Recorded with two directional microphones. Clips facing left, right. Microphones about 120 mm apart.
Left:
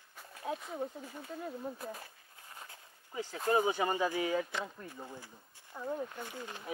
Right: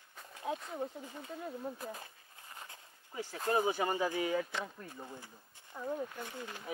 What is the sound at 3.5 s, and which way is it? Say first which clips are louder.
Speech: left 2 dB; 20° left (ahead or behind).